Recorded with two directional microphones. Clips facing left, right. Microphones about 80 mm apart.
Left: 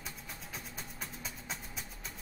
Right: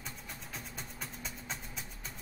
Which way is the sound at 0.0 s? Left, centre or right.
Centre.